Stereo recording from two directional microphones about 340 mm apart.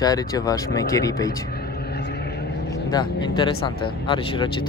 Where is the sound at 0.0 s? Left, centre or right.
Centre.